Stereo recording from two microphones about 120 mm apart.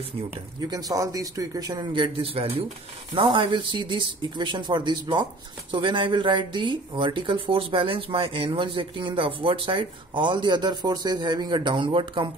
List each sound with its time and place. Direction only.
0.6 s speech: 30° right (ahead or behind); by 2.6 s 55° right (ahead or behind)
3.3 s speech: 45° right (ahead or behind)